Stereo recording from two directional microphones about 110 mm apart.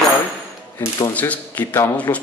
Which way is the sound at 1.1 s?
15° left (ahead or behind).